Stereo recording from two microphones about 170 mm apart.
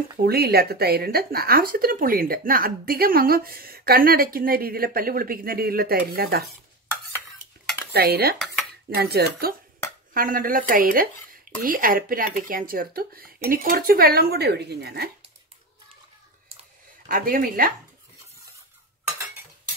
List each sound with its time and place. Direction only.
0.2 s speech: 65° right (ahead or behind)
7.9 s cutlery: 70° right (ahead or behind)
8.9 s speech: 70° right (ahead or behind)
10.1 s speech: 55° right (ahead or behind); by 15.0 s 70° right (ahead or behind)
17.1 s speech: 55° right (ahead or behind)